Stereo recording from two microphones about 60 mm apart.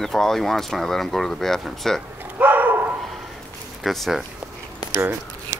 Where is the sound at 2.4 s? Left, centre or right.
Right.